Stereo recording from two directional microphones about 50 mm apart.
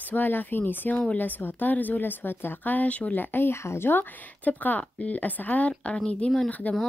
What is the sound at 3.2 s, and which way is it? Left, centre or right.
Speech, left.